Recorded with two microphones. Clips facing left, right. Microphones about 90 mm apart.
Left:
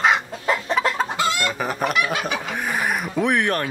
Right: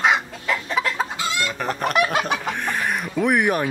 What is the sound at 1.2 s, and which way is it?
Chicken, 50° left (ahead or behind).